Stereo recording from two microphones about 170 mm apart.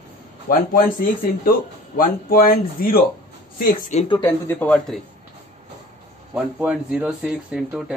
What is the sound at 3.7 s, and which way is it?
Speech, 45° left (ahead or behind).